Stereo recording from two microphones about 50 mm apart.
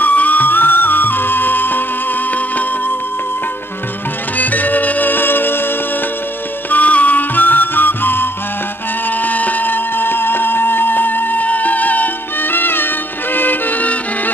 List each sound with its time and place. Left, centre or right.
0.0 s music: left
4.4 s music: left
6.7 s music: left
9.2 s a sound: left